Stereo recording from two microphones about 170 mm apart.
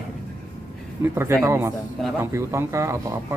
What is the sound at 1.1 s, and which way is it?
Speech, 15° right (ahead or behind).